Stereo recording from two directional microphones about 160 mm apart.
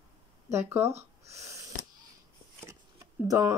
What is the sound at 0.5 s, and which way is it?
Speech, 15° right (ahead or behind).